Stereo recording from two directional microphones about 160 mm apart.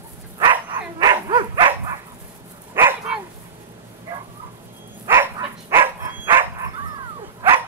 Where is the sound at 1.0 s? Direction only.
30° right (ahead or behind).